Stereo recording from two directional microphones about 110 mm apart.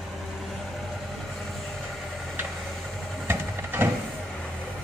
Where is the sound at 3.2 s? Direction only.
20° right (ahead or behind).